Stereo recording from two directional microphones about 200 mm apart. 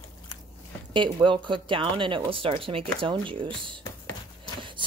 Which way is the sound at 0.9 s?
25° right (ahead or behind).